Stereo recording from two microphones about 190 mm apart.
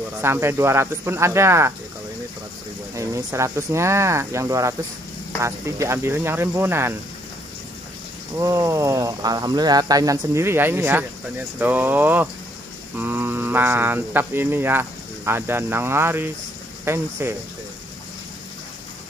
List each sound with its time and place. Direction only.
0.2 s speech: 15° right (ahead or behind)
3.0 s speech: 15° right (ahead or behind)
8.4 s speech: 15° right (ahead or behind)